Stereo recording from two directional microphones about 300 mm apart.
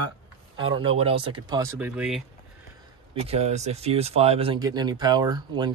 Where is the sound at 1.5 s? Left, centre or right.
Centre.